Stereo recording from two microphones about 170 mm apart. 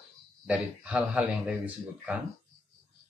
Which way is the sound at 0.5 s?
5° right (ahead or behind).